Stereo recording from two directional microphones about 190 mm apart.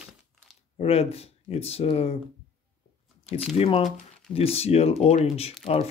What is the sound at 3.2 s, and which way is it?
Speech, 30° left (ahead or behind).